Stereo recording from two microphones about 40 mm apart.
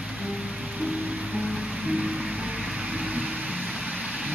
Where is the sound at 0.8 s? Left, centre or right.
Right.